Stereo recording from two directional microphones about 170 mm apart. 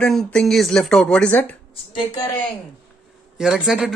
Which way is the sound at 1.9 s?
30° left (ahead or behind).